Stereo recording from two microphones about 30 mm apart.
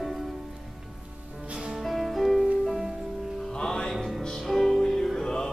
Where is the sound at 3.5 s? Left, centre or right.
Left.